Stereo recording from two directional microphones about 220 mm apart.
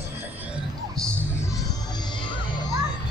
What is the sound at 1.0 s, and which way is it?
Music, centre (ahead or behind).